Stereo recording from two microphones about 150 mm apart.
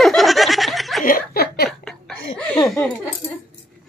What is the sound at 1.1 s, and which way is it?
Speech, 85° left.